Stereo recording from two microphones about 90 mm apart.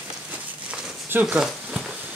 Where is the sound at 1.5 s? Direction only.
5° right (ahead or behind).